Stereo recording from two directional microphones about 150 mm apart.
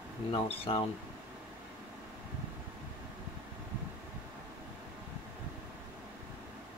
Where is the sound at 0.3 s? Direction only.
35° left (ahead or behind).